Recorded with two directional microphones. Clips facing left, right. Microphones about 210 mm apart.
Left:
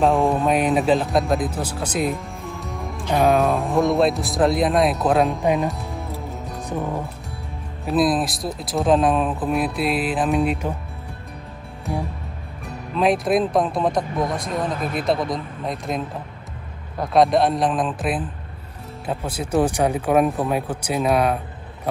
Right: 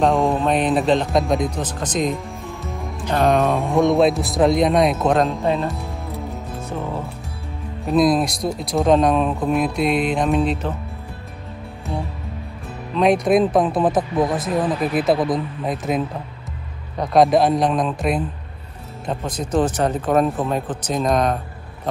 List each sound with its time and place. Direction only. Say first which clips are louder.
0.0 s speech: even; centre (ahead or behind)
7.8 s speech: right 3 dB; centre (ahead or behind)
12.9 s speech: right 3 dB; centre (ahead or behind)